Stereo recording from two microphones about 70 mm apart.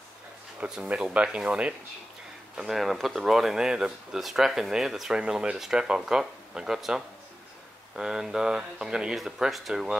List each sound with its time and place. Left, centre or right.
0.8 s speech: centre
2.5 s speech: centre